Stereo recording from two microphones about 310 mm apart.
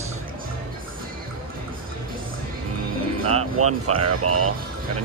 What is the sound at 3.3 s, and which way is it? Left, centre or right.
Speech, right.